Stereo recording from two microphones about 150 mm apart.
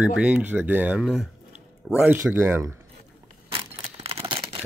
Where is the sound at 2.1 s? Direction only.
15° right (ahead or behind).